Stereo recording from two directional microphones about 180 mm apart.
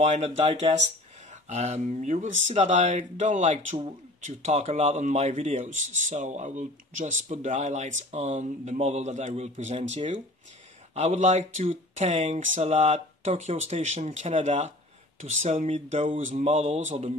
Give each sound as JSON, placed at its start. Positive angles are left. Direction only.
{"t": 0.0, "sound": "speech", "side_deg": -35}